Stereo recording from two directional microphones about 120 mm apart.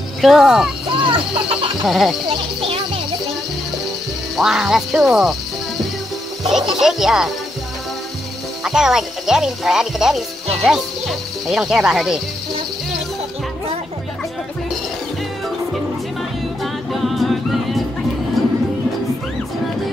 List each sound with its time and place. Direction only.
0.2 s speech: 5° right (ahead or behind)
0.8 s speech: 45° right (ahead or behind)
1.9 s speech: centre (ahead or behind)
4.4 s speech: 5° right (ahead or behind)
6.7 s speech: 5° right (ahead or behind)
8.6 s speech: 5° right (ahead or behind)
16.9 s music: centre (ahead or behind)